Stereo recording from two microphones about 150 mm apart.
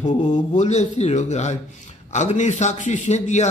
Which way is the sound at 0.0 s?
55° left (ahead or behind).